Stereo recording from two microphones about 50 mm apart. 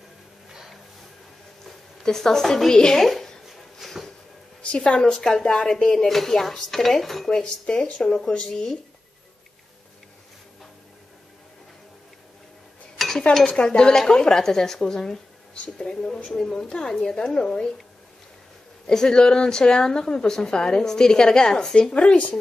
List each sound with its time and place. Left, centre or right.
0.5 s a sound: centre
2.0 s a woman's voice: centre
3.4 s a sound: centre
4.6 s a woman's voice: left
12.9 s dishes: centre
13.5 s a woman's voice: centre
18.9 s a woman's voice: centre
21.9 s speech: left